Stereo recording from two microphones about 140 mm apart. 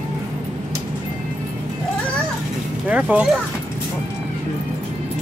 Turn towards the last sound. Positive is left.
turn(degrees=-10)  # may be behind; listen again after turning